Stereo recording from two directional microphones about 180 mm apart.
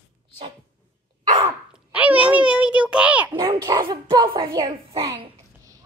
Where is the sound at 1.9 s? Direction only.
10° right (ahead or behind).